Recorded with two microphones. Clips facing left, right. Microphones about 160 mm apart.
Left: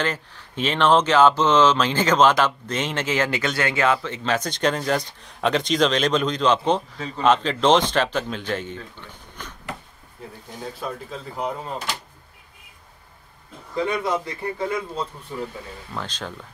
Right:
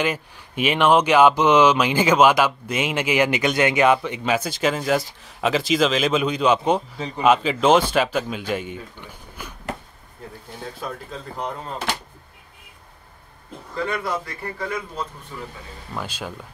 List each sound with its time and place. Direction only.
0.0 s speech: 10° right (ahead or behind)
10.6 s speech: centre (ahead or behind)
13.7 s a man's voice: 20° left (ahead or behind)
15.9 s speech: 10° right (ahead or behind)